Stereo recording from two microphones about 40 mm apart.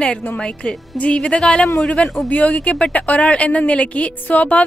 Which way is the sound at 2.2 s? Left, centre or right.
Left.